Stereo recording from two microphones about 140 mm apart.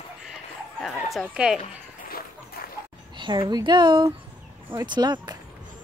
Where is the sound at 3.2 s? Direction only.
35° right (ahead or behind).